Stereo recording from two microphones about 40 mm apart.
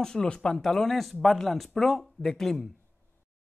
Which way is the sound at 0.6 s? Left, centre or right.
Centre.